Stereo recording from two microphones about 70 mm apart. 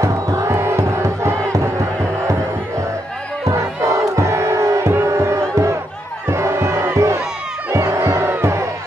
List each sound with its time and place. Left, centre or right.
0.0 s crowd: right
3.4 s crowd: right
5.1 s music: right